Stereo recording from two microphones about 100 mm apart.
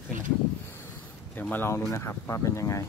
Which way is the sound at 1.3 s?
20° left (ahead or behind).